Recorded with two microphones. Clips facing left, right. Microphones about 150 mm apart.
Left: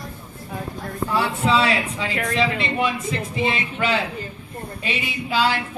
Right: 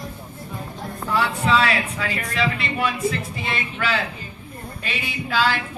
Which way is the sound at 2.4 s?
25° left (ahead or behind).